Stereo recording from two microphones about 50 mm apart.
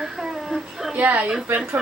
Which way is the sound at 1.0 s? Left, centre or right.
Right.